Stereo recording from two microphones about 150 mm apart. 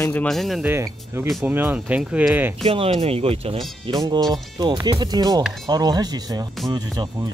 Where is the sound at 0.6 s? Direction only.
15° right (ahead or behind).